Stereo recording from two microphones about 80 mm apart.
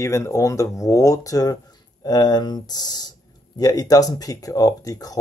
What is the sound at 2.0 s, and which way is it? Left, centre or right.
Speech, left.